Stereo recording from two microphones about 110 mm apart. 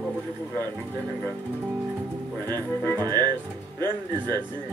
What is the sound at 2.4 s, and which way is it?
Music, 20° left (ahead or behind).